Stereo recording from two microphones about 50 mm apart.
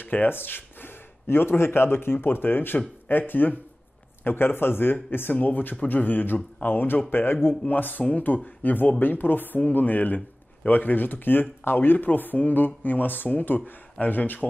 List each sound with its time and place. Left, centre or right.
0.0 s a man's voice: left